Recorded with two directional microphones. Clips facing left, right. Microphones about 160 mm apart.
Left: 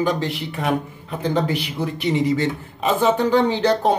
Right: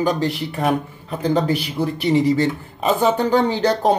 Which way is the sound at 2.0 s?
35° right (ahead or behind).